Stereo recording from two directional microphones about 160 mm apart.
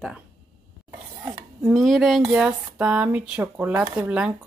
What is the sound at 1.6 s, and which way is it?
Speech, centre (ahead or behind).